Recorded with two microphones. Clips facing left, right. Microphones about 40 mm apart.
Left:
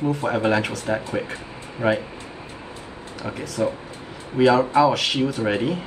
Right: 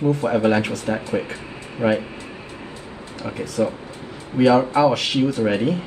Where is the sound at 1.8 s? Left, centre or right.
Right.